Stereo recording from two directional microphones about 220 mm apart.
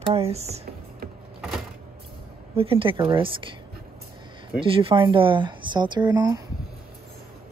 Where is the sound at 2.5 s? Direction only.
25° right (ahead or behind).